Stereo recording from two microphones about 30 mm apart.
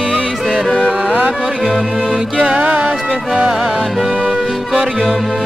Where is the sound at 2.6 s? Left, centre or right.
Right.